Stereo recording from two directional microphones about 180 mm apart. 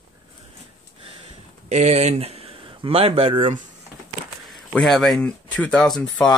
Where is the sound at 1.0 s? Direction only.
35° right (ahead or behind).